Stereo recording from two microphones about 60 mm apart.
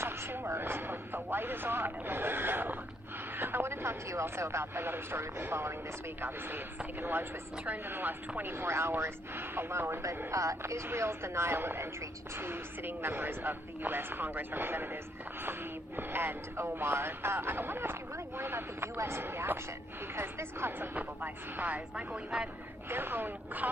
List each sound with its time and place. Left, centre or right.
0.0 s speech: right
7.0 s speech: right
8.6 s speech: right
10.0 s speech: right
10.6 s speech: right
16.0 s speech: right
20.9 s speech: right
22.8 s speech: right